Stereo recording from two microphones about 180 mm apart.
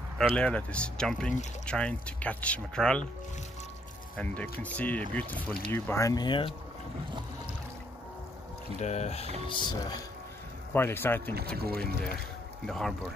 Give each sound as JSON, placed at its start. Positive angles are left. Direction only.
{"t": 0.4, "sound": "speech", "side_deg": 5}
{"t": 4.2, "sound": "speech", "side_deg": 10}
{"t": 8.7, "sound": "speech", "side_deg": 40}
{"t": 9.5, "sound": "speech", "side_deg": 25}
{"t": 10.7, "sound": "speech", "side_deg": 10}
{"t": 11.5, "sound": "speech", "side_deg": -60}
{"t": 12.6, "sound": "speech", "side_deg": 5}